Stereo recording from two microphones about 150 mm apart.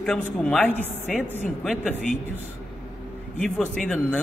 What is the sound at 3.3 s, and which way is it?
Speech, 5° left (ahead or behind).